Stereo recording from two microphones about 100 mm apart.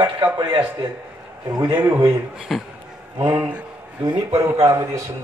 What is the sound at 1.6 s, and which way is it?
Speech, 20° right (ahead or behind).